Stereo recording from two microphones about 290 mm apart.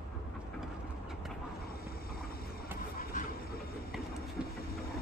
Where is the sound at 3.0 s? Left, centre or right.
Left.